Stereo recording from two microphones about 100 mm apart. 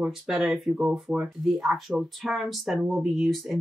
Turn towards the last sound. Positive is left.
turn(degrees=0)  # may be behind; listen again after turning